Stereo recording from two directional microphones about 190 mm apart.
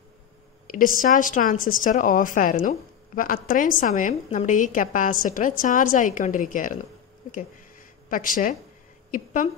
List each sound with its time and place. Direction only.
0.7 s a woman's voice: 45° left (ahead or behind)